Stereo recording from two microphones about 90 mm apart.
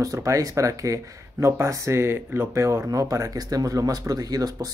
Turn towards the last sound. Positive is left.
turn(degrees=-45)  # may be behind; listen again after turning